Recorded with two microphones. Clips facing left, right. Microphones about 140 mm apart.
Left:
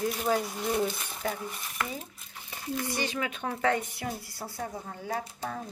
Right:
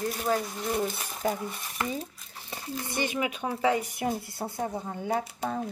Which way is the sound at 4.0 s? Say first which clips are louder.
Right 6 dB; 25° right (ahead or behind).